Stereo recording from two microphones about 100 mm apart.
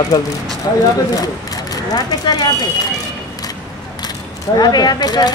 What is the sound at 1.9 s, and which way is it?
Speech, 40° left (ahead or behind).